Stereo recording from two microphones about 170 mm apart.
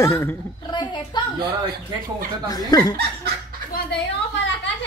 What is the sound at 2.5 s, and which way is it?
Speech, 20° left (ahead or behind).